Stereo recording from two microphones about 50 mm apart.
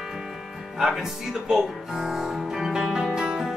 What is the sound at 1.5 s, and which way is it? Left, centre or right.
Music, centre.